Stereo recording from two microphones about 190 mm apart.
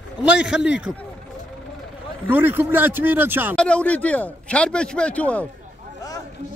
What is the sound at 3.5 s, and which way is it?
A man's voice, 5° left (ahead or behind).